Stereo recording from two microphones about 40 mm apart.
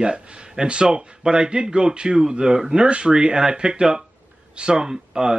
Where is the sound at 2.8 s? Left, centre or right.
Right.